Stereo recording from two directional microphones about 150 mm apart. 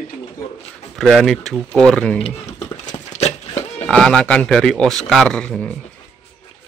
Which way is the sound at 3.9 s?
5° left (ahead or behind).